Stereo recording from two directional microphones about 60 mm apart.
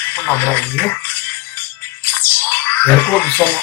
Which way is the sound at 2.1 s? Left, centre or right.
Left.